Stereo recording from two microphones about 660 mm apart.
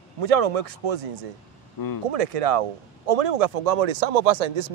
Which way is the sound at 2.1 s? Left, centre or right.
Right.